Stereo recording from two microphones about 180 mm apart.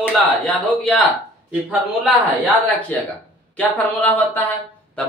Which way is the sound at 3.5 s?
10° left (ahead or behind).